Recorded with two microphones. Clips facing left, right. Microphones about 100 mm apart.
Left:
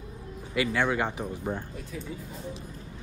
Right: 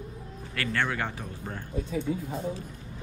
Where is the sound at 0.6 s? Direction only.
15° left (ahead or behind).